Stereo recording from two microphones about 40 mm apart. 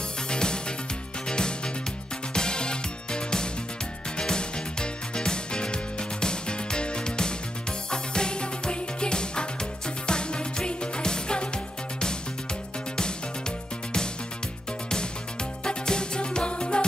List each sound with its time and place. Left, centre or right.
0.3 s music: left
2.3 s music: left
15.6 s music: centre